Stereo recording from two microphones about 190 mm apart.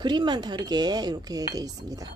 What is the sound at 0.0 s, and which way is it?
Speech, 25° right (ahead or behind).